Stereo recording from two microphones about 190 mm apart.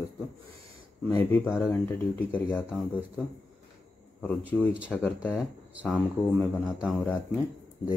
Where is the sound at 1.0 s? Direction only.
10° left (ahead or behind).